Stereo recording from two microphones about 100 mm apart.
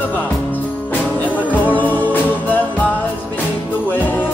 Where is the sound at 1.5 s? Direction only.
20° left (ahead or behind).